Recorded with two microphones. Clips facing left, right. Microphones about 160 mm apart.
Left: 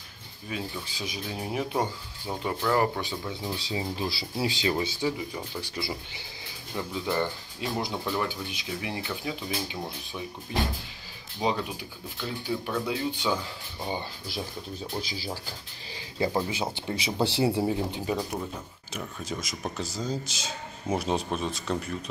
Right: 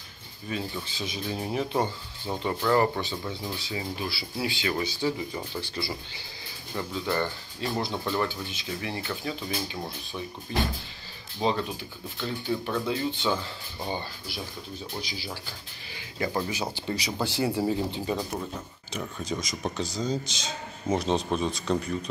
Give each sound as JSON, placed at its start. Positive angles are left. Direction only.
{"t": 0.5, "sound": "speech", "side_deg": 5}
{"t": 3.6, "sound": "speech", "side_deg": 30}
{"t": 4.6, "sound": "speech", "side_deg": 25}
{"t": 6.7, "sound": "speech", "side_deg": 10}
{"t": 15.0, "sound": "speech", "side_deg": 30}
{"t": 16.3, "sound": "speech", "side_deg": 25}
{"t": 17.6, "sound": "a man's voice", "side_deg": 10}